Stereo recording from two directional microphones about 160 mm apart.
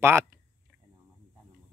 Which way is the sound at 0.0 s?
15° right (ahead or behind).